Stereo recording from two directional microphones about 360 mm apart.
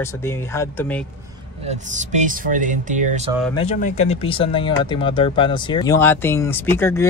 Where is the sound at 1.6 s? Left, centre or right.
Centre.